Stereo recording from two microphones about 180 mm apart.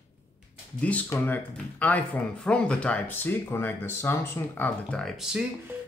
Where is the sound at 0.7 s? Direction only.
10° left (ahead or behind).